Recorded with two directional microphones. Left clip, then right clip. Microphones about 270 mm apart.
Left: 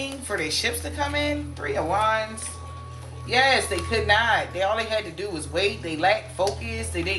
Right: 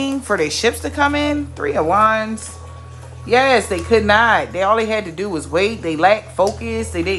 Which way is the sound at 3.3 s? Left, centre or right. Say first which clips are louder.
Right 6 dB; right.